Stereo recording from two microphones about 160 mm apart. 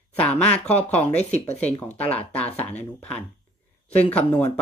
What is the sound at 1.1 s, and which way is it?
Speech, 40° left (ahead or behind).